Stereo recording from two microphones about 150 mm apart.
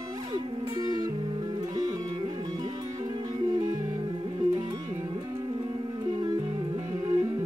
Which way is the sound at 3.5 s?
25° right (ahead or behind).